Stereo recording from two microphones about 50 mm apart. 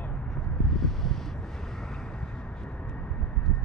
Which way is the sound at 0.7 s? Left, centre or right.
Centre.